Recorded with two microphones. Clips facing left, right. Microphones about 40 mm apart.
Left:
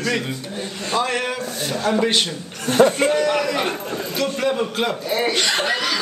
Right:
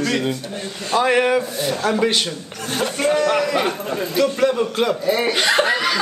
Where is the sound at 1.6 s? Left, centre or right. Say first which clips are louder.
Right 1 dB; centre.